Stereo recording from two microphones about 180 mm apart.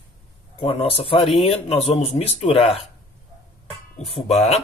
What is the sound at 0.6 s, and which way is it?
Speech, 30° left (ahead or behind).